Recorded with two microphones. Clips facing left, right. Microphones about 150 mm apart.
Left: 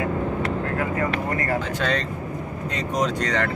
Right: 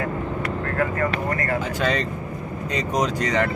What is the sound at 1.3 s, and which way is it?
Speech, 25° left (ahead or behind).